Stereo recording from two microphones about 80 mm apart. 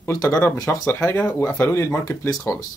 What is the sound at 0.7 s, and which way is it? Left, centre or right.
Speech, left.